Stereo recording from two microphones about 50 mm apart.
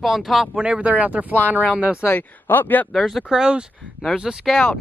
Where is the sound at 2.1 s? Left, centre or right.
Left.